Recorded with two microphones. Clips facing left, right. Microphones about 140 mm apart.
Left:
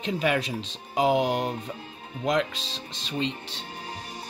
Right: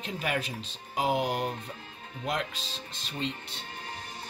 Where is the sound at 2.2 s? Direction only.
90° left.